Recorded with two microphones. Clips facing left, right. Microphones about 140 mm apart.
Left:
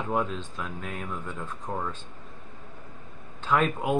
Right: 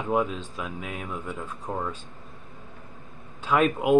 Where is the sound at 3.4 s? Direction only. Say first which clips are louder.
Right 2 dB; 10° right (ahead or behind).